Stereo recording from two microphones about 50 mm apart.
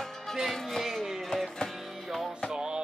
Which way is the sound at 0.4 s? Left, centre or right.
Centre.